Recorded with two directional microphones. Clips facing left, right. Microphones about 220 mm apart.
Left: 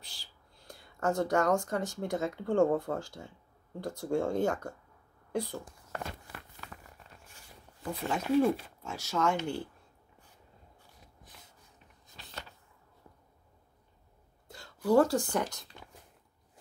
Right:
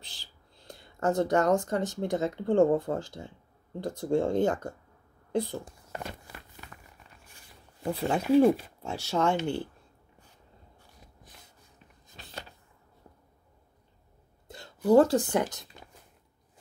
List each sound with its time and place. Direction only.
0.0 s speech: 20° right (ahead or behind)
7.8 s speech: 30° right (ahead or behind)
14.9 s speech: 20° right (ahead or behind)